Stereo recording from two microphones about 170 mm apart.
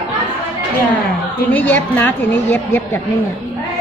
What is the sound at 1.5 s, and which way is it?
A woman's voice, 10° left (ahead or behind).